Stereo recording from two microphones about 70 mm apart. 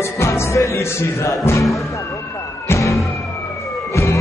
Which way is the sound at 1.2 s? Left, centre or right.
Left.